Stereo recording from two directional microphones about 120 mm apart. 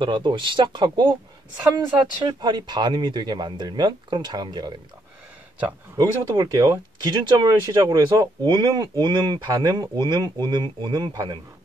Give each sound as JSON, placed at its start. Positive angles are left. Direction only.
{"t": 0.0, "sound": "speech", "side_deg": -40}
{"t": 2.2, "sound": "speech", "side_deg": -40}
{"t": 5.9, "sound": "speech", "side_deg": -35}